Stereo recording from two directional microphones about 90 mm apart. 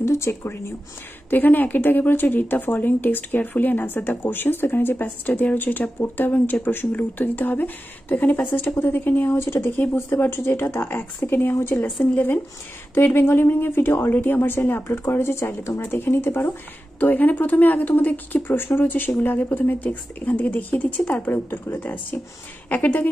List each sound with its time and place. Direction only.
0.0 s speech: 30° left (ahead or behind)